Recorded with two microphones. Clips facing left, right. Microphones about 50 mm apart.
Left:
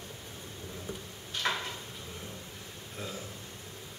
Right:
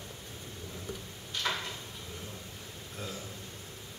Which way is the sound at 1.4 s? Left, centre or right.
Centre.